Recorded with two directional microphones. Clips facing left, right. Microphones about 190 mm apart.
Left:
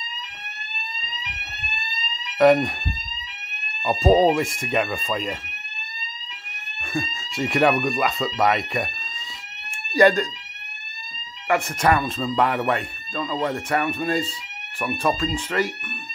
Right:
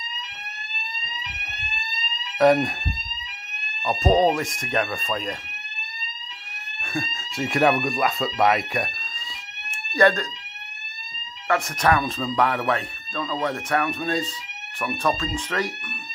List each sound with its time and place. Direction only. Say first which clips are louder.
2.0 s fire alarm: left 2 dB; centre (ahead or behind)
4.0 s speech: left 2 dB; centre (ahead or behind)
6.9 s speech: left 2 dB; centre (ahead or behind)
9.9 s speech: left 3 dB; 15° left (ahead or behind)
11.8 s speech: even; 5° left (ahead or behind)